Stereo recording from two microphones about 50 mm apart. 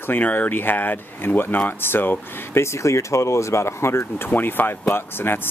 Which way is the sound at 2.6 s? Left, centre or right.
Left.